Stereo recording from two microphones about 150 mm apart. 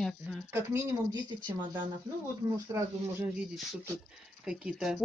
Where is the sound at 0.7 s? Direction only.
20° right (ahead or behind).